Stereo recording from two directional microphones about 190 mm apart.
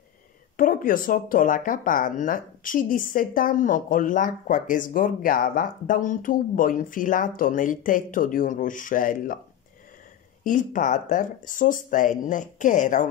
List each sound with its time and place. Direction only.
0.6 s speech: 45° left (ahead or behind)
10.4 s speech: 45° left (ahead or behind)